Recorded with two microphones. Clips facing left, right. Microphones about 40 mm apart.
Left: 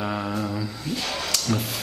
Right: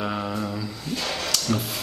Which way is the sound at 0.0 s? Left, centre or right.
Centre.